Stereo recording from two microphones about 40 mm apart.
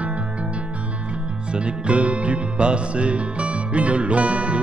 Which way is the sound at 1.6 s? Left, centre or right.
Right.